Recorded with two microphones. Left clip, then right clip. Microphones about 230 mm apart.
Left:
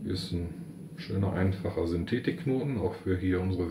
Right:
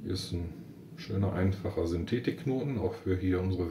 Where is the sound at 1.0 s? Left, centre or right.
Centre.